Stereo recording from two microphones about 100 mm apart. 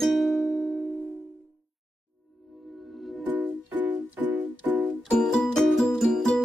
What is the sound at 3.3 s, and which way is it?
Music, 15° right (ahead or behind).